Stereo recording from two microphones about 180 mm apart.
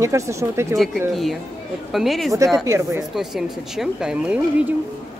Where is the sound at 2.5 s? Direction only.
15° right (ahead or behind).